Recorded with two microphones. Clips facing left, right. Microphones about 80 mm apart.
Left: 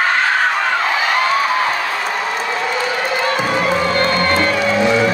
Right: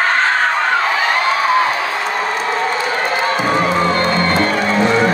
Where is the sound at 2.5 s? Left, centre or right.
Right.